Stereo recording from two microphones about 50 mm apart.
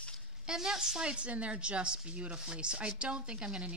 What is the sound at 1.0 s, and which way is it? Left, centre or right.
Speech, right.